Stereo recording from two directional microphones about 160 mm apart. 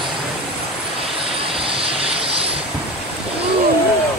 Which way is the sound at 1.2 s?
35° right (ahead or behind).